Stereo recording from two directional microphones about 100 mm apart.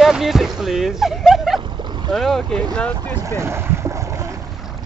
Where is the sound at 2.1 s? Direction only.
Centre (ahead or behind).